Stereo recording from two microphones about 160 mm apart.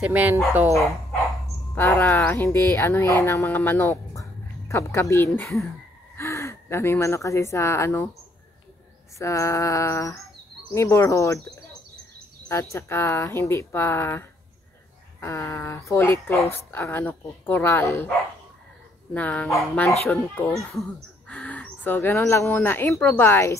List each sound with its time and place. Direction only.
0.0 s speech: 10° right (ahead or behind)
1.8 s speech: 10° left (ahead or behind)
9.2 s a sound: 20° left (ahead or behind)
12.7 s speech: 15° left (ahead or behind)
19.1 s speech: 10° left (ahead or behind)